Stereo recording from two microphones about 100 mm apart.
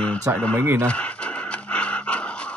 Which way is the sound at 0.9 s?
10° left (ahead or behind).